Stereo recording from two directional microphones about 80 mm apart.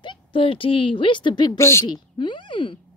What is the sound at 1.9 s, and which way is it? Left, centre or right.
Speech, left.